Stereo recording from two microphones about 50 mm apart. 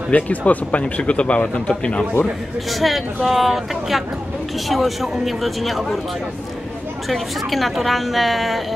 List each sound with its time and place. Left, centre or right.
0.1 s speech: left
2.7 s a woman's voice: centre
7.1 s a woman's voice: centre